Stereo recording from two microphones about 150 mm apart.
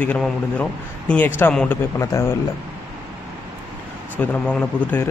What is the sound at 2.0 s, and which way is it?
Speech, 20° left (ahead or behind).